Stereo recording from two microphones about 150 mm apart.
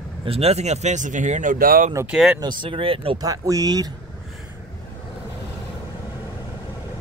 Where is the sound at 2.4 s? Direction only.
35° right (ahead or behind).